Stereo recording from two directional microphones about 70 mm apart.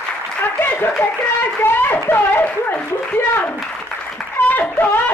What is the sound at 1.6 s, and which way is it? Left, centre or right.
Speech, left.